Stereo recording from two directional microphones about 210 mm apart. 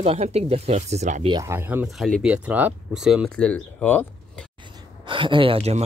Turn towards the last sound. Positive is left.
turn(degrees=-30)  # may be behind; listen again after turning